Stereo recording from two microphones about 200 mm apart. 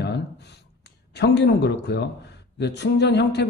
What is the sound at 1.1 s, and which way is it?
Speech, 60° left (ahead or behind).